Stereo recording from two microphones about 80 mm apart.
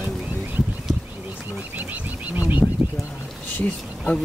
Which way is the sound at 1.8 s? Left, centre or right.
Right.